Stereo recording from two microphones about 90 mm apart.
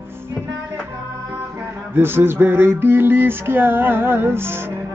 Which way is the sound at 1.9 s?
25° right (ahead or behind).